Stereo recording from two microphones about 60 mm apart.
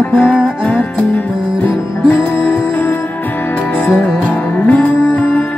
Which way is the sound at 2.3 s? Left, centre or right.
Left.